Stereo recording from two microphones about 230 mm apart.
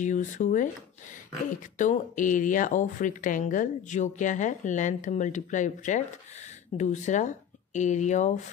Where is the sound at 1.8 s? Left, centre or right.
Left.